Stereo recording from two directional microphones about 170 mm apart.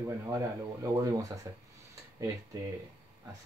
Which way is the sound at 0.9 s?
20° right (ahead or behind).